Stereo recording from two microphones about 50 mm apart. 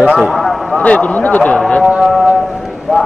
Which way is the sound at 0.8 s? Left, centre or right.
Left.